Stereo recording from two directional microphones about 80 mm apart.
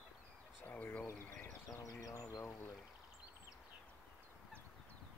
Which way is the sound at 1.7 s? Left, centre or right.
Left.